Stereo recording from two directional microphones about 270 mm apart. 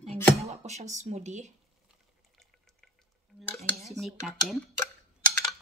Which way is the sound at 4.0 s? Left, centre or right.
Centre.